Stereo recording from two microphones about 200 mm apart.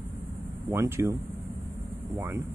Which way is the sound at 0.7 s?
15° right (ahead or behind).